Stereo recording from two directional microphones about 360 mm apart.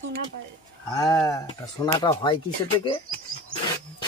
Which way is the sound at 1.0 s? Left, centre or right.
Centre.